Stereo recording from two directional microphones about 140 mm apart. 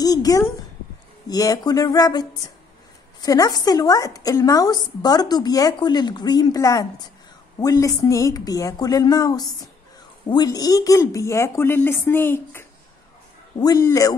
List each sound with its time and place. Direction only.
0.0 s a woman's voice: 25° left (ahead or behind)